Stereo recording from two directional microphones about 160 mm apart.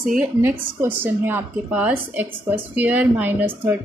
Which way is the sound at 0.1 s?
5° right (ahead or behind).